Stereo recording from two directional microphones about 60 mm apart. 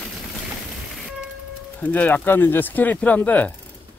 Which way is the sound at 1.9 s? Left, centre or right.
Left.